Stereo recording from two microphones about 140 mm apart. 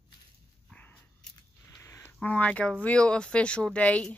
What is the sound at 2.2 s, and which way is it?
Speech, 10° left (ahead or behind).